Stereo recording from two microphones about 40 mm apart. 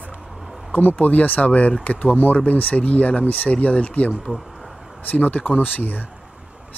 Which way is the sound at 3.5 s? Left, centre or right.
Left.